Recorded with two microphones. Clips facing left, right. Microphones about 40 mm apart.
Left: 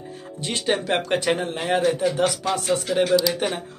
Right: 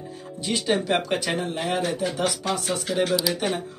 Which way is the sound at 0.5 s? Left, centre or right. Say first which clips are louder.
Even; left.